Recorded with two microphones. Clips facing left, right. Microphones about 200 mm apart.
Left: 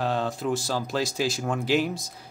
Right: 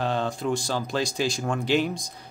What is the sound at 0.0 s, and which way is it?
Speech, centre (ahead or behind).